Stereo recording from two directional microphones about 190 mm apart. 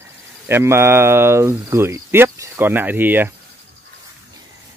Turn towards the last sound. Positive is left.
turn(degrees=-10)  # may be behind; listen again after turning